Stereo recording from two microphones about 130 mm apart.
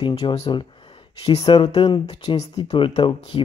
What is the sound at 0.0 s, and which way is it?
Speech, 30° left (ahead or behind).